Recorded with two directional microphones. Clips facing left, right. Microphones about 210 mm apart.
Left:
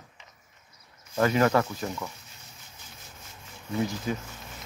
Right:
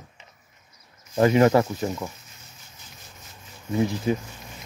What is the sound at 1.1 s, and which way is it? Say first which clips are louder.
Speech: right 5 dB; 25° right (ahead or behind).